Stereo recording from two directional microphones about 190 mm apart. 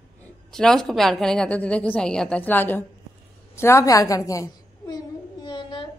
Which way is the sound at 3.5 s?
15° left (ahead or behind).